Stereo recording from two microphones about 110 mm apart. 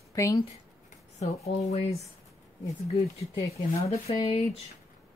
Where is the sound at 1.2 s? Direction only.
75° left (ahead or behind).